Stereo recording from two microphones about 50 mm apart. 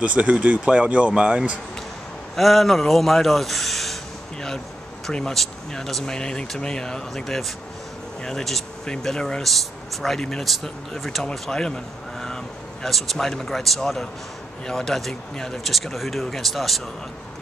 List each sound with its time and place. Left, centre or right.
0.0 s speech: right
2.3 s a man's voice: centre